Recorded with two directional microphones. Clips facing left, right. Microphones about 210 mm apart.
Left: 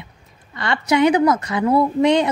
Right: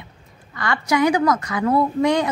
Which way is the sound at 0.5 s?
25° left (ahead or behind).